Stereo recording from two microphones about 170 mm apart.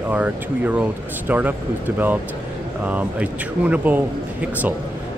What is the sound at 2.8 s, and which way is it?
Speech, 10° right (ahead or behind).